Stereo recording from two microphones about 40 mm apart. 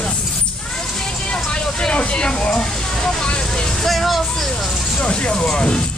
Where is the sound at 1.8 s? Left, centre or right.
Left.